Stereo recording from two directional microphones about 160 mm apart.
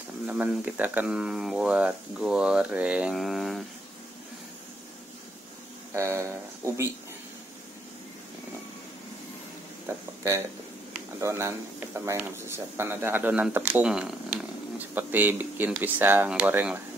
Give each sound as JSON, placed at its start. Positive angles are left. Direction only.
{"t": 0.3, "sound": "speech", "side_deg": -10}
{"t": 5.9, "sound": "speech", "side_deg": -20}
{"t": 11.1, "sound": "speech", "side_deg": -20}